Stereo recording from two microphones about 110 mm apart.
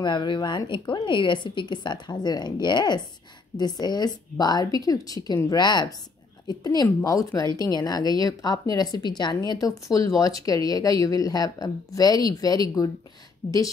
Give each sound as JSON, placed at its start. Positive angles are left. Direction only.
{"t": 0.0, "sound": "a woman's voice", "side_deg": 45}
{"t": 13.4, "sound": "a woman's voice", "side_deg": 90}